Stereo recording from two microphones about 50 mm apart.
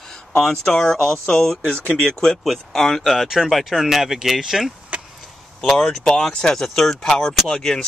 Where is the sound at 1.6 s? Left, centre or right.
Left.